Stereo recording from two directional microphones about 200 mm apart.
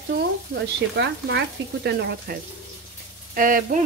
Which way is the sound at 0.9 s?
60° right (ahead or behind).